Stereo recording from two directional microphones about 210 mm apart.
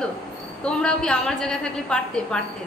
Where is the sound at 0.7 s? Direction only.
5° left (ahead or behind).